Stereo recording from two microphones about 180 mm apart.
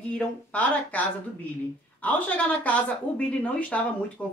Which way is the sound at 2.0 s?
10° left (ahead or behind).